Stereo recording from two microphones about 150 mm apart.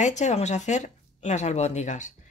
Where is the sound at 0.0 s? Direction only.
50° left (ahead or behind).